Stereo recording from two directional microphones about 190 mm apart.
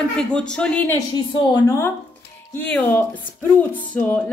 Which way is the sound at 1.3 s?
20° left (ahead or behind).